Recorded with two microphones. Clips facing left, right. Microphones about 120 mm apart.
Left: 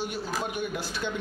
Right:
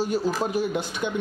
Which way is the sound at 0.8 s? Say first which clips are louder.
Right 4 dB; 20° right (ahead or behind).